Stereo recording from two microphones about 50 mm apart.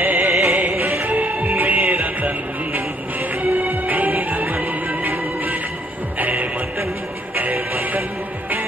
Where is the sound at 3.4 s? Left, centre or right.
Right.